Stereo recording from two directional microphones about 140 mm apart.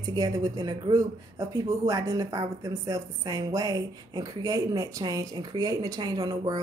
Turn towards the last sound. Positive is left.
turn(degrees=-30)  # may be behind; listen again after turning